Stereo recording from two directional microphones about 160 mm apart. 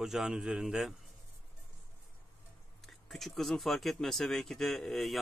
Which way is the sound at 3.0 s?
Centre (ahead or behind).